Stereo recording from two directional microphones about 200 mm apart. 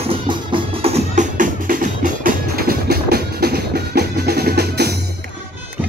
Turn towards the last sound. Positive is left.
turn(degrees=-55)  # may be behind; listen again after turning